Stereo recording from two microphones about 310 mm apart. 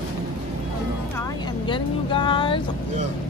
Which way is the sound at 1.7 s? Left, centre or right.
Centre.